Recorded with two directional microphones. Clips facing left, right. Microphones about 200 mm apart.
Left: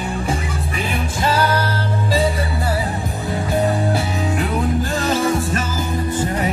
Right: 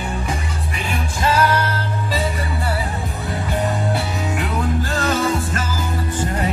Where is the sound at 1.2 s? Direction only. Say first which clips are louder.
Right 1 dB; 30° left (ahead or behind).